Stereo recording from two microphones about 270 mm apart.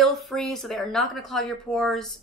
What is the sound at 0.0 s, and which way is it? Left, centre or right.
Speech, centre.